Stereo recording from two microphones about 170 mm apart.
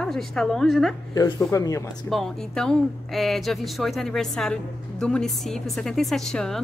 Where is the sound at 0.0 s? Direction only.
Centre (ahead or behind).